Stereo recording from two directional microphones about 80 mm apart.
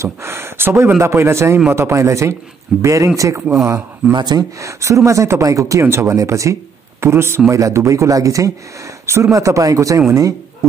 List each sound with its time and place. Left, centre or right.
0.0 s a man's voice: right
4.1 s speech: right
4.6 s speech: right